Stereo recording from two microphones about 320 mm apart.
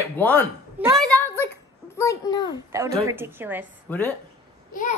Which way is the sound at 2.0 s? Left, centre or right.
Centre.